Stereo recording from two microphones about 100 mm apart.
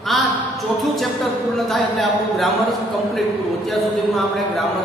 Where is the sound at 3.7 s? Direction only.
Centre (ahead or behind).